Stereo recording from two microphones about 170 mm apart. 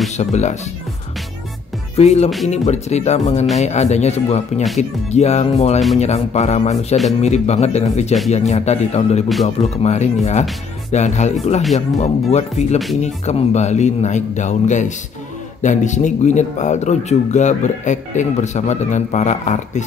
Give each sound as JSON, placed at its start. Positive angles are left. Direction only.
{"t": 0.2, "sound": "speech", "side_deg": 40}
{"t": 2.0, "sound": "speech", "side_deg": 40}